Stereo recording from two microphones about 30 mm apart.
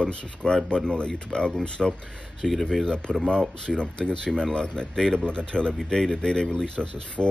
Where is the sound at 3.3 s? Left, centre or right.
Left.